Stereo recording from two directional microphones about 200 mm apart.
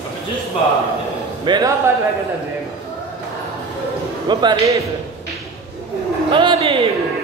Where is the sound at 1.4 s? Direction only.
20° right (ahead or behind).